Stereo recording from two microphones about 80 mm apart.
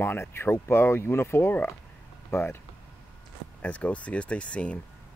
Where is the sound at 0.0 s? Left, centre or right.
Left.